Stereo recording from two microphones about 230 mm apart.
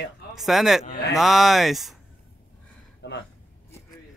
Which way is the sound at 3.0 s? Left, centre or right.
Left.